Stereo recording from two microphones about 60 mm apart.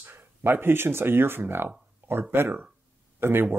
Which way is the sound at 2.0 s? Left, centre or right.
Right.